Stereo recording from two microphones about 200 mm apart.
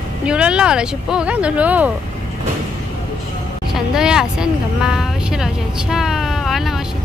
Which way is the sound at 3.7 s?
5° right (ahead or behind).